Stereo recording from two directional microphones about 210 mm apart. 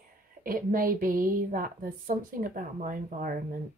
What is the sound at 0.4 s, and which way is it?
A woman's voice, 40° right (ahead or behind).